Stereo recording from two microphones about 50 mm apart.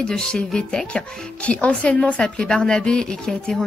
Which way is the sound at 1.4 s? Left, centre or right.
Left.